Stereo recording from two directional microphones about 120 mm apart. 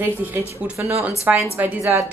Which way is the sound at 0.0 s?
20° right (ahead or behind).